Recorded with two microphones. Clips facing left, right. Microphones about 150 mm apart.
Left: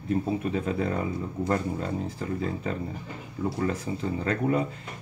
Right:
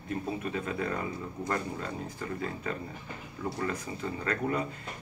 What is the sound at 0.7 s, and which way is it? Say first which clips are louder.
Speech: left 5 dB; 30° left (ahead or behind).